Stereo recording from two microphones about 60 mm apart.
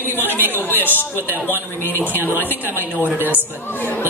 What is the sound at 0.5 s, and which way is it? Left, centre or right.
Chatter, left.